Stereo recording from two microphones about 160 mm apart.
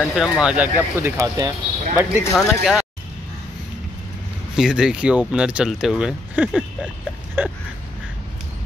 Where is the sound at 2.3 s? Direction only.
Centre (ahead or behind).